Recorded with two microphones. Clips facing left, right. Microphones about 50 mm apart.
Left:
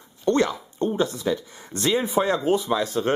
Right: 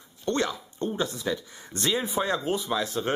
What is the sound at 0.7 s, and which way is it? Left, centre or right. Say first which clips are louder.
Speech: left 8 dB; left.